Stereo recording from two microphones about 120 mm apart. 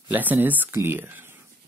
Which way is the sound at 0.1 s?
15° right (ahead or behind).